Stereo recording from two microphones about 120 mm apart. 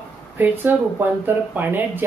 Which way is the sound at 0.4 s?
15° right (ahead or behind).